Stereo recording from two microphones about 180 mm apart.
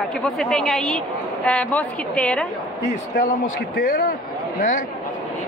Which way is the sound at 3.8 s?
55° left (ahead or behind).